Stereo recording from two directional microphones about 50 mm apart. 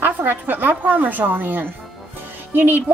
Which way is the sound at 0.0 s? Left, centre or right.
Right.